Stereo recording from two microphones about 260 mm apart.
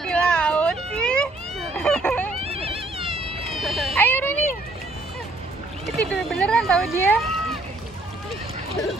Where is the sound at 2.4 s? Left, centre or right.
Right.